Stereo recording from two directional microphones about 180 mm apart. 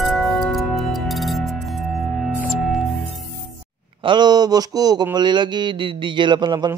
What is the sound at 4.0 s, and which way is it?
A man's voice, 25° right (ahead or behind).